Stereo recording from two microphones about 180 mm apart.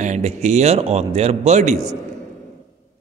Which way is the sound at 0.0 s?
40° right (ahead or behind).